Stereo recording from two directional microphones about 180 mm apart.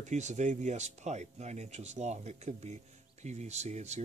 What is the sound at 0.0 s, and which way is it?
Speech, 40° right (ahead or behind).